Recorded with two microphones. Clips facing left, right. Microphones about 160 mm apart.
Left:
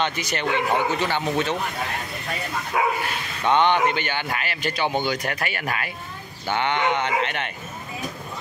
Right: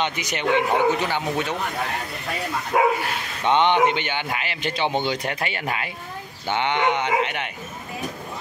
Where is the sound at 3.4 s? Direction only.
20° right (ahead or behind).